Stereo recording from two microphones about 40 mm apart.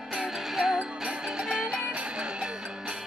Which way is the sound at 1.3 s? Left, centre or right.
Centre.